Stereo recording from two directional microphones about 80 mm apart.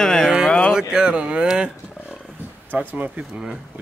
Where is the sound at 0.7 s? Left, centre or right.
Centre.